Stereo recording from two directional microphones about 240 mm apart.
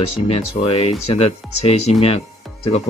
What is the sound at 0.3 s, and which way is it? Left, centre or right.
Speech, left.